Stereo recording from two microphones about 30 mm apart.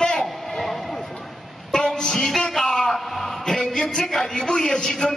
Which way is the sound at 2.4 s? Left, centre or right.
Left.